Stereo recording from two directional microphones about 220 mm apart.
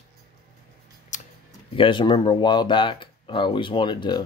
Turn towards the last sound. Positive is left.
turn(degrees=20)  # may be behind; listen again after turning